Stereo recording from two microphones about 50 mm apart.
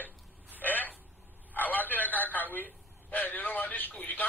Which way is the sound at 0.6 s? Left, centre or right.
Left.